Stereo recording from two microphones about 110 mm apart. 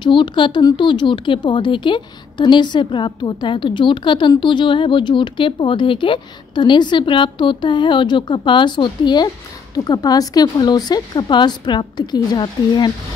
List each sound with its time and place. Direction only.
0.0 s a woman's voice: 45° left (ahead or behind)